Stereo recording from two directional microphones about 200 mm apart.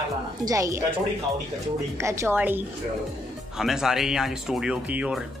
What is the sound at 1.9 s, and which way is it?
Speech, 15° right (ahead or behind).